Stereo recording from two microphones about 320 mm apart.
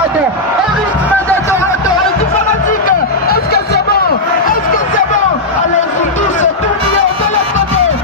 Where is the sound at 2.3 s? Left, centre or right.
Left.